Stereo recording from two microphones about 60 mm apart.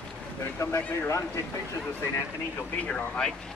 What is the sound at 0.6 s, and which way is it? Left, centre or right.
Speech, left.